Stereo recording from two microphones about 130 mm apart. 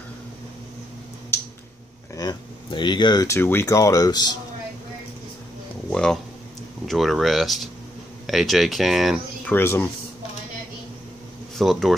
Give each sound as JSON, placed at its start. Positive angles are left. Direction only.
{"t": 2.1, "sound": "a sound", "side_deg": 35}
{"t": 3.3, "sound": "speech", "side_deg": 20}
{"t": 5.9, "sound": "a sound", "side_deg": 5}
{"t": 6.9, "sound": "speech", "side_deg": 0}
{"t": 9.5, "sound": "speech", "side_deg": 15}
{"t": 11.5, "sound": "speech", "side_deg": 0}